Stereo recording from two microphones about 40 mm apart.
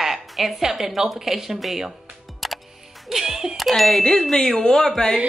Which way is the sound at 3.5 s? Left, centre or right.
Centre.